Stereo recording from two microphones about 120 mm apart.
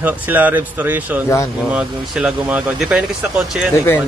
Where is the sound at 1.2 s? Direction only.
25° left (ahead or behind).